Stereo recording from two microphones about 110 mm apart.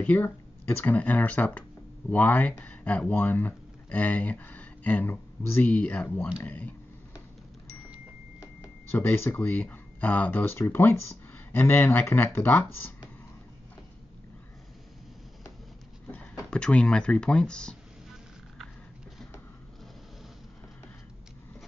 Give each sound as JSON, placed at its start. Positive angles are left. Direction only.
{"t": 0.0, "sound": "speech", "side_deg": 15}
{"t": 8.9, "sound": "speech", "side_deg": 20}
{"t": 16.1, "sound": "speech", "side_deg": 10}